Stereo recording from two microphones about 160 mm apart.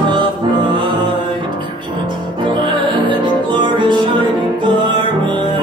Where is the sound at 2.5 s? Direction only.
30° right (ahead or behind).